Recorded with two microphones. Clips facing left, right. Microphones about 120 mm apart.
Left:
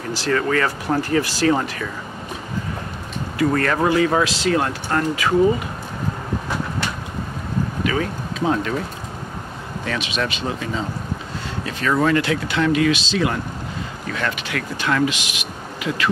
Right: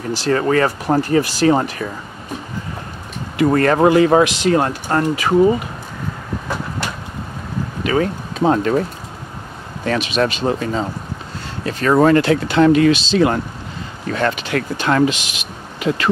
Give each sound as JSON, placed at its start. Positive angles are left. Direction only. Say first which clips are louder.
{"t": 0.3, "sound": "speech", "louder": "right 4 dB", "side_deg": -30}
{"t": 3.4, "sound": "speech", "louder": "right 6 dB", "side_deg": -35}
{"t": 3.9, "sound": "a man's voice", "louder": "right 6 dB", "side_deg": -25}
{"t": 4.5, "sound": "speech", "louder": "right 4 dB", "side_deg": -35}
{"t": 7.8, "sound": "speech", "louder": "right 8 dB", "side_deg": -40}
{"t": 9.8, "sound": "speech", "louder": "right 7 dB", "side_deg": -40}